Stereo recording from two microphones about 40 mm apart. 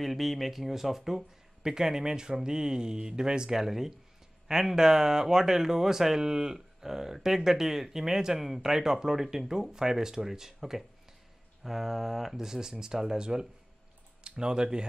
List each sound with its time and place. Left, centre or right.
0.0 s speech: centre; by 14.9 s right